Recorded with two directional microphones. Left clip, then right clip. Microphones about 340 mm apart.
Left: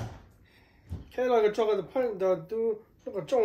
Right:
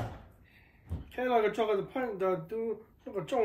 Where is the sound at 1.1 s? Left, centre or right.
Left.